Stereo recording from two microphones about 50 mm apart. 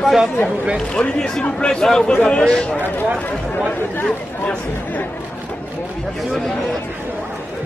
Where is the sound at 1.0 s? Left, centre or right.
Centre.